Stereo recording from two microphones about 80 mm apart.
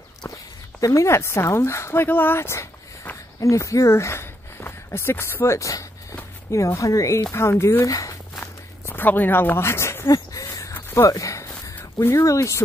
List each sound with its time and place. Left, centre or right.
0.7 s speech: left
7.8 s speech: left
8.8 s speech: left
10.9 s a sound: left
12.0 s speech: left